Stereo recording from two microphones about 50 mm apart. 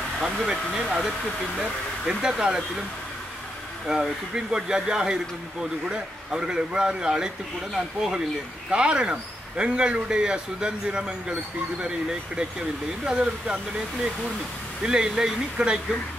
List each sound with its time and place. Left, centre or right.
0.2 s speech: centre
3.8 s speech: centre
14.8 s speech: centre